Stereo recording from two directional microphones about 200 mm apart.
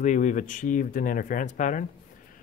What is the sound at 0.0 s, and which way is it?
Speech, 40° left (ahead or behind).